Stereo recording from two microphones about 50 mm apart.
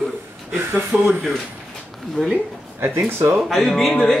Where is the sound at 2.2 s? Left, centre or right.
Centre.